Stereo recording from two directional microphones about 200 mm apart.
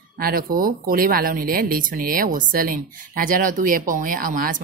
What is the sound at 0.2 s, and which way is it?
Speech, 50° right (ahead or behind).